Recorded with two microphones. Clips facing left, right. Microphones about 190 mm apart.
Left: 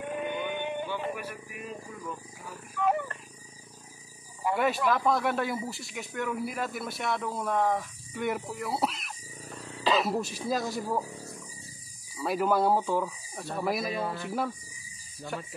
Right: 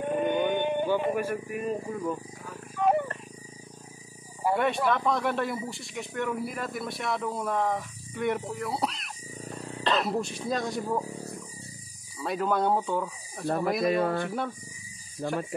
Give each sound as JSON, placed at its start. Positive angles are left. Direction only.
{"t": 0.0, "sound": "a sound", "side_deg": -40}
{"t": 2.8, "sound": "speech", "side_deg": -40}
{"t": 4.8, "sound": "speech", "side_deg": 0}
{"t": 12.2, "sound": "speech", "side_deg": 5}
{"t": 13.9, "sound": "speech", "side_deg": -60}